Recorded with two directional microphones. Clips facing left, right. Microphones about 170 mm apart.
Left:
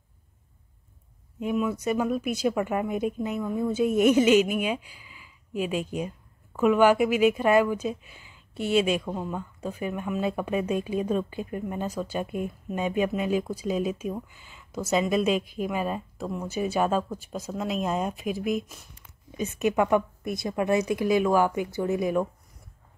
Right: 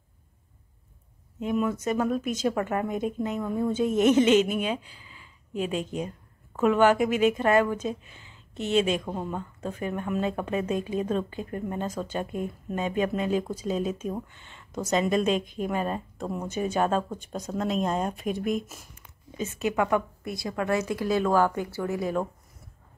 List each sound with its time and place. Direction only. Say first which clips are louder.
1.4 s speech: even; 10° left (ahead or behind)
9.0 s speech: even; 5° right (ahead or behind)
9.6 s speech: even; 10° left (ahead or behind)
19.3 s speech: left 2 dB; 20° left (ahead or behind)